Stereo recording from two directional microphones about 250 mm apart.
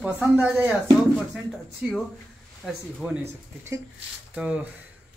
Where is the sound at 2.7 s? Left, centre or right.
Centre.